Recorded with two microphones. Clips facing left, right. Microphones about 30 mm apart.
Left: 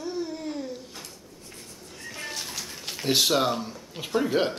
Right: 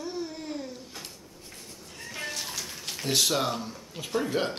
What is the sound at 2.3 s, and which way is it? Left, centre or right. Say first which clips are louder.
Pigeon: even; centre.